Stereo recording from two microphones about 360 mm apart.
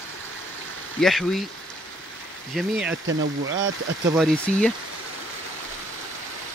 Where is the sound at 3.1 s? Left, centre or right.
Right.